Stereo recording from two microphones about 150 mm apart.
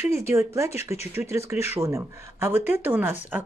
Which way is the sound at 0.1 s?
15° right (ahead or behind).